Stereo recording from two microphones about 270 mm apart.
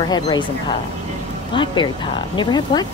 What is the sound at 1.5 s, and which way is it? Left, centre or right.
A woman's voice, centre.